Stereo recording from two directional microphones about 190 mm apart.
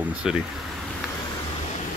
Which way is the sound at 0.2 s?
5° right (ahead or behind).